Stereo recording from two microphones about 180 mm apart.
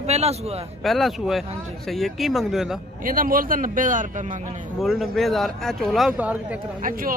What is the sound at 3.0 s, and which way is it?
A man's voice, 50° right (ahead or behind).